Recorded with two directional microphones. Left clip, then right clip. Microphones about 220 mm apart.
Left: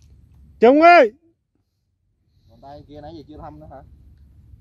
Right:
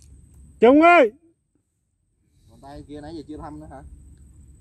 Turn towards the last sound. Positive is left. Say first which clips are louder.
# right 1 dB
turn(degrees=-5)  # may be behind; listen again after turning